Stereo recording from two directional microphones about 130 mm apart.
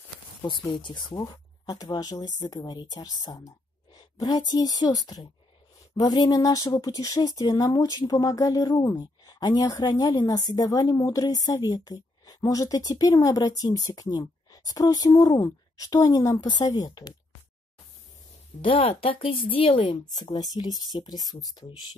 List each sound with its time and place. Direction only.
0.7 s speech: 35° left (ahead or behind)
18.6 s speech: 45° left (ahead or behind)